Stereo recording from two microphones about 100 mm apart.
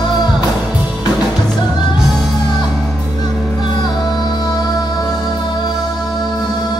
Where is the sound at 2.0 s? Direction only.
5° right (ahead or behind).